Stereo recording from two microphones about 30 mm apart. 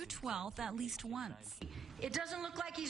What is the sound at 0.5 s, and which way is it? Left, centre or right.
Speech, centre.